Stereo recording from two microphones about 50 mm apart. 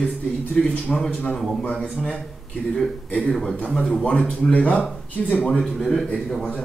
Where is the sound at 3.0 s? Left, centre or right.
Left.